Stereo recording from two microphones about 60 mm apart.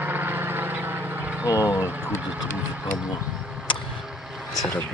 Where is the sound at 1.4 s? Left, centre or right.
Left.